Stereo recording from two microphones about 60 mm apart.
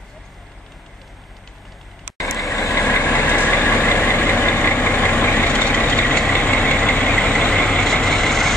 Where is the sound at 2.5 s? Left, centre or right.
Left.